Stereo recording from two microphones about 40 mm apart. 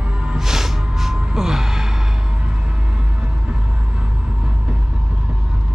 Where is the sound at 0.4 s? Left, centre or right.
Centre.